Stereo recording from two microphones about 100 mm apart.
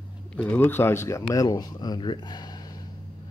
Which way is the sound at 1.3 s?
40° left (ahead or behind).